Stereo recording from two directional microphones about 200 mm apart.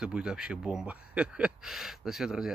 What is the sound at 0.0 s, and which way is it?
Speech, 5° right (ahead or behind).